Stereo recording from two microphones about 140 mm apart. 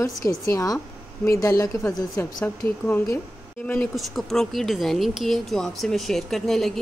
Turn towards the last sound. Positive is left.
turn(degrees=5)  # may be behind; listen again after turning